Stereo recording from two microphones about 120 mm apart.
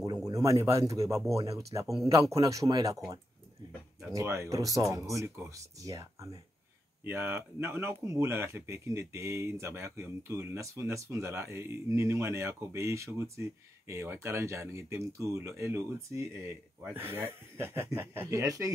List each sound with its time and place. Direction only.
0.0 s speech: 30° right (ahead or behind)
4.1 s speech: 25° right (ahead or behind)
7.1 s speech: 20° right (ahead or behind)